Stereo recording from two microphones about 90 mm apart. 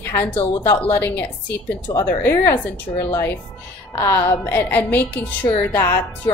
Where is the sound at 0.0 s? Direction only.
25° left (ahead or behind).